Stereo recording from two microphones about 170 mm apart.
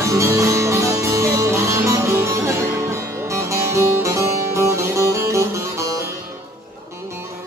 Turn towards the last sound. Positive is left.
turn(degrees=-15)  # may be behind; listen again after turning